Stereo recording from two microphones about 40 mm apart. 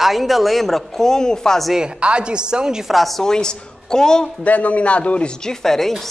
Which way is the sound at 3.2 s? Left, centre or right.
Centre.